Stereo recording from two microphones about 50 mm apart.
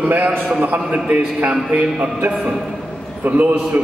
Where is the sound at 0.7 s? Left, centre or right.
Right.